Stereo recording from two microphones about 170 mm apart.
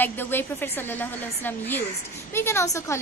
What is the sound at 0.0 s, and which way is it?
A woman's voice, 10° left (ahead or behind).